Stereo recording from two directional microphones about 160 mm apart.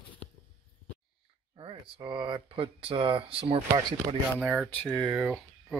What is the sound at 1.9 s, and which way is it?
Speech, 30° right (ahead or behind).